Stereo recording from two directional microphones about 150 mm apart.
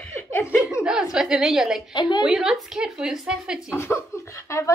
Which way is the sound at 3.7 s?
15° left (ahead or behind).